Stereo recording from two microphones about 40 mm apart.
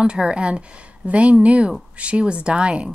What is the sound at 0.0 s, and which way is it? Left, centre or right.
Speech, right.